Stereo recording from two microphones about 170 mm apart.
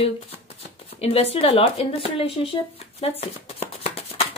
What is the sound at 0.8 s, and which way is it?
Speech, 35° left (ahead or behind).